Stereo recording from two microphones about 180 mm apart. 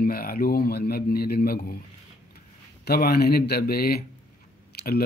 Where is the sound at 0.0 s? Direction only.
55° left (ahead or behind).